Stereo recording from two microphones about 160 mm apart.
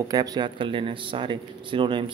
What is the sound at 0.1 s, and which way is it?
Speech, 25° right (ahead or behind).